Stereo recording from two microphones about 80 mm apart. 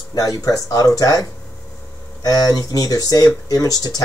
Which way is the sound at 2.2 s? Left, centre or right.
Left.